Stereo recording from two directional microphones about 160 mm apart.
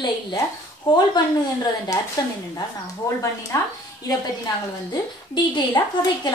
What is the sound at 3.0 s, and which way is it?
Speech, 15° left (ahead or behind).